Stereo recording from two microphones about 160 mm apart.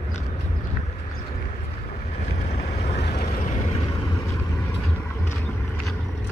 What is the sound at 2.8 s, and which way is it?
Boat, 85° left.